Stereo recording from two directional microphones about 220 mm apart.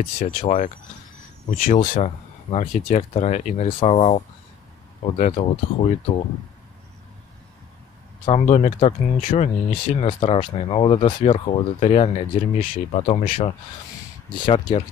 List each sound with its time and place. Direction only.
0.3 s speech: 40° left (ahead or behind)
1.8 s speech: 30° left (ahead or behind)
8.3 s speech: 30° left (ahead or behind)